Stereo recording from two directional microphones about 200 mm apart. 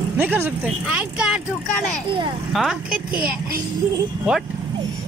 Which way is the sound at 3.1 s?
45° right (ahead or behind).